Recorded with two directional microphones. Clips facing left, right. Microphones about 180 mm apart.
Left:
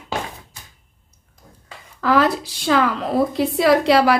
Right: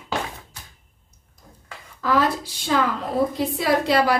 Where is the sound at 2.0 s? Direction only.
75° left (ahead or behind).